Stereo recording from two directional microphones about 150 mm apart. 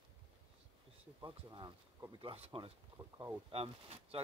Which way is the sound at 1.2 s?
30° right (ahead or behind).